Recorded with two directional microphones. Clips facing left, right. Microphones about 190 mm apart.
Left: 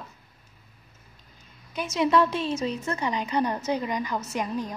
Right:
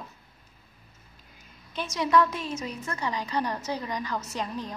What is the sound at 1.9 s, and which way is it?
A woman's voice, 25° left (ahead or behind).